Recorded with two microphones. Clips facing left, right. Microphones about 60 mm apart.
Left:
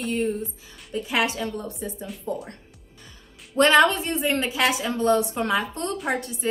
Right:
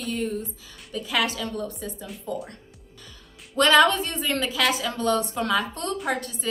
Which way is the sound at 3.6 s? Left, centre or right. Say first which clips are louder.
Left 2 dB; left.